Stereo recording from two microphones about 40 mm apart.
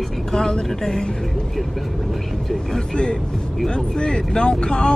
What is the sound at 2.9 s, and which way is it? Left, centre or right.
Speech, left.